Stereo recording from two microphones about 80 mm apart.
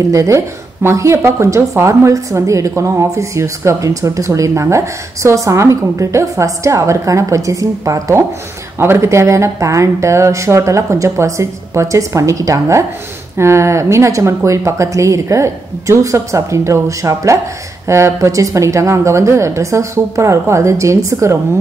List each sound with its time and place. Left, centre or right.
0.1 s a woman's voice: right
8.7 s a woman's voice: right